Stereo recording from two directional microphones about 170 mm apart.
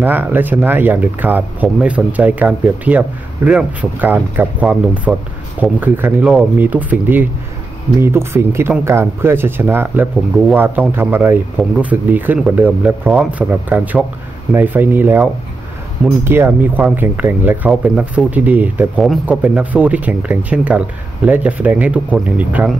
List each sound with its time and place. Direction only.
0.0 s speech: 10° right (ahead or behind)
16.3 s speech: 10° right (ahead or behind)